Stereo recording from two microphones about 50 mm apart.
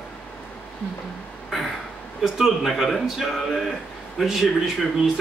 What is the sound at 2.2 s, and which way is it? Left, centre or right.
Speech, centre.